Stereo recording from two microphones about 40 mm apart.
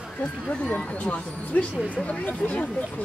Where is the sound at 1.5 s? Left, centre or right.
Left.